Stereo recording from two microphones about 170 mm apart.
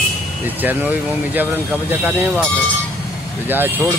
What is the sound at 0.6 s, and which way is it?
Speech, 10° right (ahead or behind).